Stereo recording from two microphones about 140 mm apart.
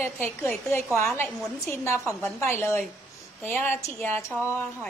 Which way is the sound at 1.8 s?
20° left (ahead or behind).